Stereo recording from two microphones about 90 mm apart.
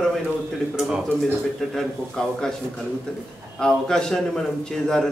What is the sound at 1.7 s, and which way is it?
Speech, 5° left (ahead or behind).